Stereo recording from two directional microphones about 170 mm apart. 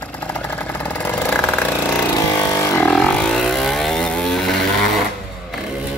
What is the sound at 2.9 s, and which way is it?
Vehicle, 5° left (ahead or behind).